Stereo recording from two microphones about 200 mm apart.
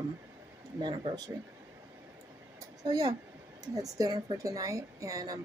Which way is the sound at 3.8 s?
20° right (ahead or behind).